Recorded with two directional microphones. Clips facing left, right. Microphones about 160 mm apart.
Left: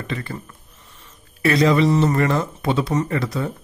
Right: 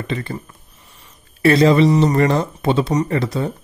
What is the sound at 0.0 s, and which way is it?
Speech, 25° right (ahead or behind).